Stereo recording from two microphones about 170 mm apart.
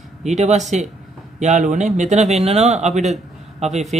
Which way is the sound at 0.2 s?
40° right (ahead or behind).